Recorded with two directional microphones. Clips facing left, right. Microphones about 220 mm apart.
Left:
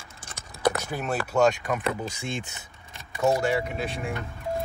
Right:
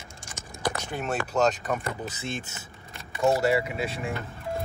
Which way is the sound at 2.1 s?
15° left (ahead or behind).